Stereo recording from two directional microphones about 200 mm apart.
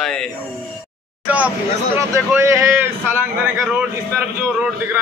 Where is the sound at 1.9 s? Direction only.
10° right (ahead or behind).